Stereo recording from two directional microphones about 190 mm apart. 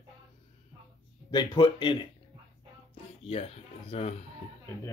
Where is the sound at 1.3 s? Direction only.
20° left (ahead or behind).